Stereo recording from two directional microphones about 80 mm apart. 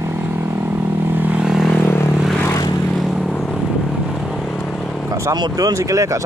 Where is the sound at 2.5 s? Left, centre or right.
Left.